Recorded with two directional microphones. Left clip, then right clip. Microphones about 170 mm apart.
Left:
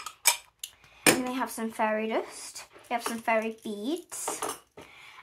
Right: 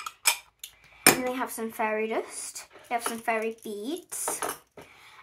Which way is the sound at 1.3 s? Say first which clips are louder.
Even; 35° left (ahead or behind).